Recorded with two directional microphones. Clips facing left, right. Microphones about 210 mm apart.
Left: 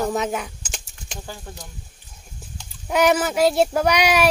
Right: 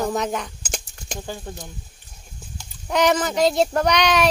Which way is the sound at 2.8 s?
5° left (ahead or behind).